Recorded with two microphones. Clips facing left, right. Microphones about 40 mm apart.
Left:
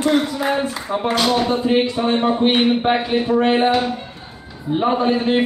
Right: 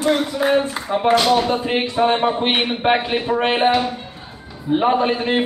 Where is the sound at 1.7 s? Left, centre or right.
Right.